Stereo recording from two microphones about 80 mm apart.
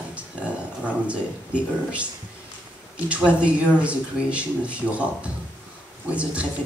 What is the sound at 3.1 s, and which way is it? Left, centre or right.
Speech, centre.